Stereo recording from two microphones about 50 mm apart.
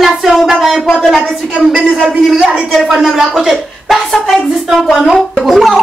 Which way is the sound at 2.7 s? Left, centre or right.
Centre.